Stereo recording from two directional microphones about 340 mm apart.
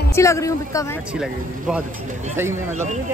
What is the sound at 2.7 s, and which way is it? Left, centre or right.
Speech, right.